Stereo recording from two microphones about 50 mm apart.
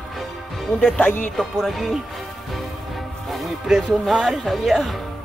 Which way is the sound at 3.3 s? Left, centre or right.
Centre.